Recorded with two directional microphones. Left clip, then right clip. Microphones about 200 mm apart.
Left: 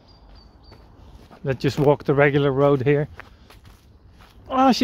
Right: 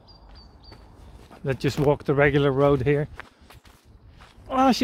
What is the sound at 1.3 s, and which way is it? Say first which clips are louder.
Speech: left 2 dB; 5° left (ahead or behind).